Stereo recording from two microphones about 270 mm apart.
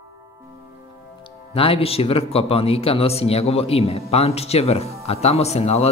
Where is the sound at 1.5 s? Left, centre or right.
Left.